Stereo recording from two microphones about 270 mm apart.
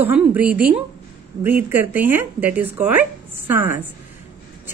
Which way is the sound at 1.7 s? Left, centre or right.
Centre.